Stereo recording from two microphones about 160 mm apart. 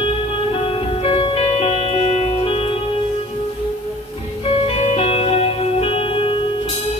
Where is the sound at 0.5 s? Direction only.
35° left (ahead or behind).